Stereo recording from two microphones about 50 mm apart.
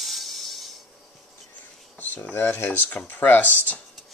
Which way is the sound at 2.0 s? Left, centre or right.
Left.